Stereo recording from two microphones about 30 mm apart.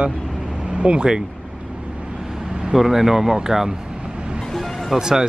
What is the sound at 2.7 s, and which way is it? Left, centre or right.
Speech, centre.